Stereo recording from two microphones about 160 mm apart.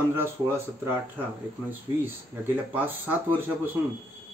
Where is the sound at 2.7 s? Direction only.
10° right (ahead or behind).